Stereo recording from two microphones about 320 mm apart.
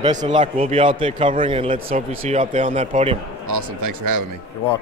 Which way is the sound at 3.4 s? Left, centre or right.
Right.